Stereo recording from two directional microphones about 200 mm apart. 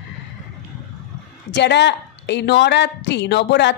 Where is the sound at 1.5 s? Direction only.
60° left (ahead or behind).